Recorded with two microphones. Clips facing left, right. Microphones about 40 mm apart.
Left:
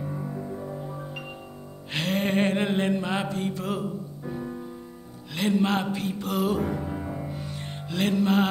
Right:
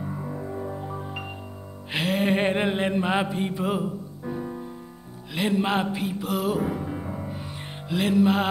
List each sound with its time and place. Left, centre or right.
0.1 s music: centre
1.9 s music: centre
2.5 s mantra: centre
4.3 s music: centre